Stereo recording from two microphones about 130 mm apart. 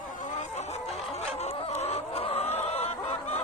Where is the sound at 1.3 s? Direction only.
55° left (ahead or behind).